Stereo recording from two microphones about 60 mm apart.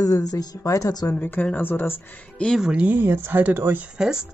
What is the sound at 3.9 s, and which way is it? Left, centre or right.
Speech, centre.